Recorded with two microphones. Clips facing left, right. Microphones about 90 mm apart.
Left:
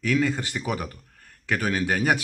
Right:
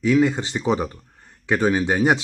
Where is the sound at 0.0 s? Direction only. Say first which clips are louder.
Right 6 dB; 20° right (ahead or behind).